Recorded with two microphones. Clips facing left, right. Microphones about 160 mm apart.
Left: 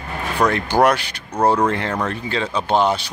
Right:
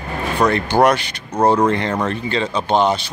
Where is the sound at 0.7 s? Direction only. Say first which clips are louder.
Right 1 dB; 10° left (ahead or behind).